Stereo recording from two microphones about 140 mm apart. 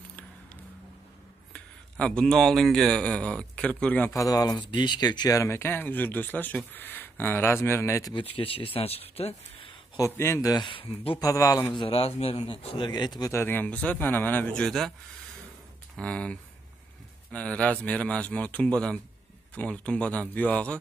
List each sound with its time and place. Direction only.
1.5 s a man's voice: 5° left (ahead or behind)
4.2 s speech: 25° left (ahead or behind)
8.1 s speech: 40° left (ahead or behind)
9.9 s speech: 20° left (ahead or behind); by 11.1 s 40° left (ahead or behind)
11.1 s speech: 25° left (ahead or behind)
11.8 s a man's voice: 45° left (ahead or behind); by 14.9 s 5° left (ahead or behind)
16.0 s speech: 5° left (ahead or behind)